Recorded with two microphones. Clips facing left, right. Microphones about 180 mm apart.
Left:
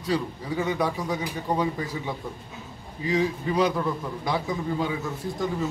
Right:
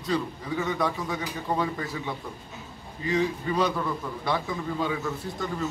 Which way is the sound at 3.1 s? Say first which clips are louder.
Left 1 dB; 10° left (ahead or behind).